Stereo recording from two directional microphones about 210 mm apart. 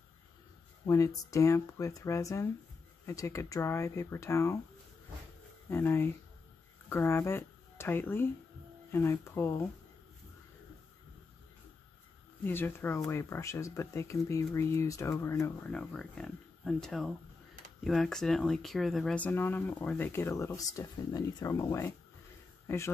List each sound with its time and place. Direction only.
0.8 s speech: 15° left (ahead or behind)
5.7 s speech: 10° left (ahead or behind)
12.4 s speech: 10° left (ahead or behind)